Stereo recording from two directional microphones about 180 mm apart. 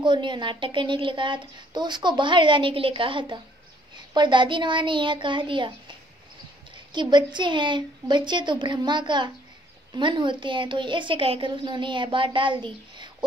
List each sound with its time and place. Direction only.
0.0 s a woman's voice: 25° right (ahead or behind)
6.9 s a woman's voice: 25° right (ahead or behind)